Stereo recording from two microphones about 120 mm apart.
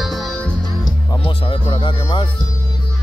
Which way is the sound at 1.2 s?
45° left (ahead or behind).